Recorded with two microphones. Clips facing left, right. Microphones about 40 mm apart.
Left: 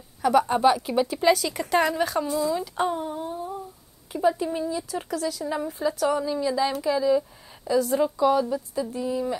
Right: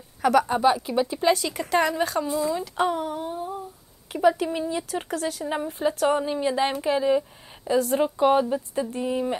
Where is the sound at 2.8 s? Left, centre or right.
Right.